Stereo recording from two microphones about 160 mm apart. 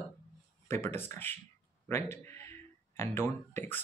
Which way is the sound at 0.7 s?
15° left (ahead or behind).